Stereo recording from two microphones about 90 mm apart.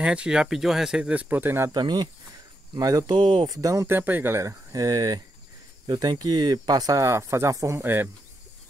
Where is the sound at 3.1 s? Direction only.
60° right (ahead or behind).